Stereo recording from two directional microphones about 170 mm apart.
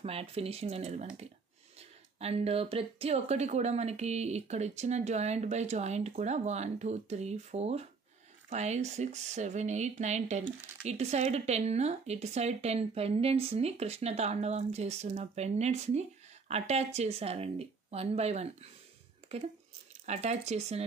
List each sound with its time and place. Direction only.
0.0 s speech: 35° right (ahead or behind)
20.1 s speech: 40° right (ahead or behind)